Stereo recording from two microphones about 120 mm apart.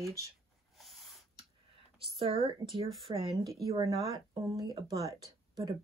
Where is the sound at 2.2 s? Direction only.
50° right (ahead or behind).